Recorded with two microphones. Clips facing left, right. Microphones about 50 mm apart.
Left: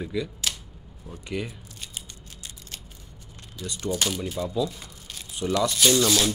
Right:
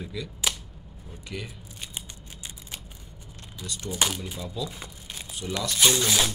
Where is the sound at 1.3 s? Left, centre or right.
Centre.